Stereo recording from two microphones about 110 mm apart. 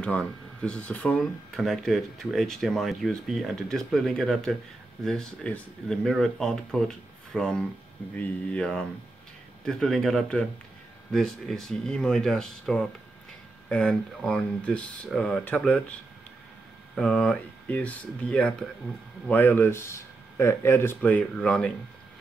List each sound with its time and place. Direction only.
0.0 s speech: 10° left (ahead or behind)
16.9 s speech: 5° left (ahead or behind)